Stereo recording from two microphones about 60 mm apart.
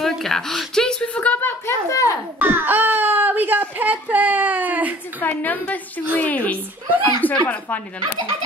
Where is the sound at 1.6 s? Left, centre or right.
Left.